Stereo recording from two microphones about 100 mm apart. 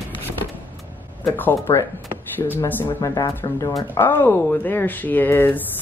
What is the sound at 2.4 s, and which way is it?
Speech, 25° left (ahead or behind).